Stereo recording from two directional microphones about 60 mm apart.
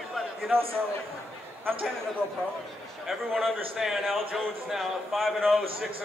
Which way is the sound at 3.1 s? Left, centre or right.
Centre.